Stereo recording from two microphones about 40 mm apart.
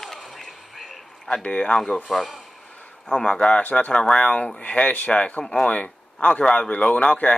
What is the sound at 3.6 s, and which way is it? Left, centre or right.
Speech, left.